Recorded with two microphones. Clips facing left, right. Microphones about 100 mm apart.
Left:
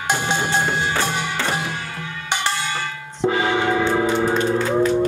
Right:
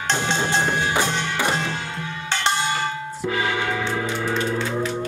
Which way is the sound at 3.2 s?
30° left (ahead or behind).